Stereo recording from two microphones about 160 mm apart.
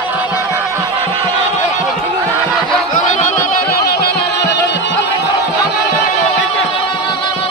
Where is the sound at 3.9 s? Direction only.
80° left.